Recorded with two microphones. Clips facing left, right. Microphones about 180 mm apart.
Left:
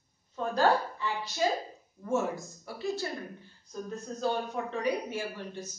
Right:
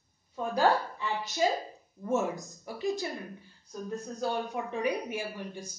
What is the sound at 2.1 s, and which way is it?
Speech, 20° right (ahead or behind).